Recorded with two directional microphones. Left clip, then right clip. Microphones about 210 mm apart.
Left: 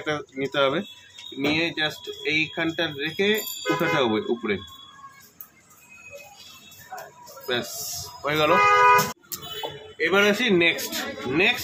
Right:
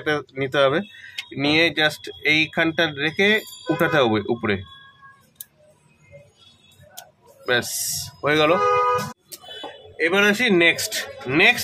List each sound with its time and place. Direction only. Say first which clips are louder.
0.0 s speech: right 4 dB; 20° right (ahead or behind)
7.4 s speech: right 6 dB; 20° right (ahead or behind)
9.9 s speech: right 2 dB; 20° right (ahead or behind)